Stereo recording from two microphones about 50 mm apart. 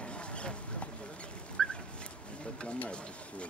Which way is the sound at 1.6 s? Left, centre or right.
Centre.